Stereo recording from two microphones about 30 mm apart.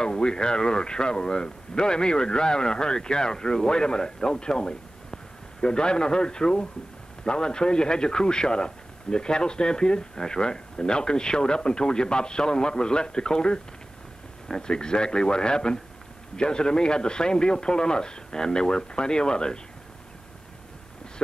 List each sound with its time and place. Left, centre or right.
0.0 s a man's voice: left